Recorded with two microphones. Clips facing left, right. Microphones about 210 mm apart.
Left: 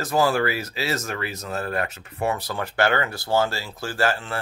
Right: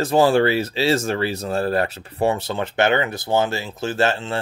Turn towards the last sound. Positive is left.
turn(degrees=-25)  # may be behind; listen again after turning